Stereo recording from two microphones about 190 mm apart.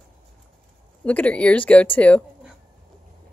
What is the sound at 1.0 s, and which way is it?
Speech, 5° left (ahead or behind).